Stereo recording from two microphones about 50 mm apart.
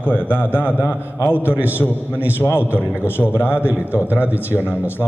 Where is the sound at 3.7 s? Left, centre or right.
Right.